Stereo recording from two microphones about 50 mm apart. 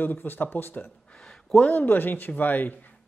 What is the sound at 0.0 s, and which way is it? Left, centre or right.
Speech, left.